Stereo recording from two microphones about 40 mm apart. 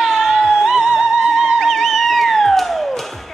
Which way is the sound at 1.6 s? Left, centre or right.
Centre.